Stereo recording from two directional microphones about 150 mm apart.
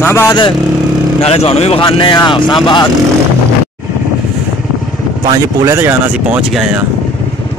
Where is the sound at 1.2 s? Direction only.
40° left (ahead or behind).